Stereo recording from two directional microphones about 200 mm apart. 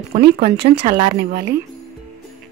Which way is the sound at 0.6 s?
35° right (ahead or behind).